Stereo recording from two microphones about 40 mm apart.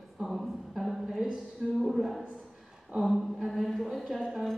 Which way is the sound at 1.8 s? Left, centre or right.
Centre.